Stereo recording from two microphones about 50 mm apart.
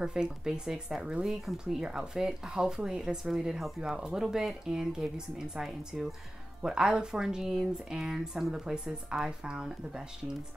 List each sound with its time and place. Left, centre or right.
0.0 s speech: centre